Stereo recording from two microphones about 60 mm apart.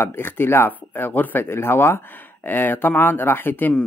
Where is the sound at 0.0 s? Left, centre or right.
Left.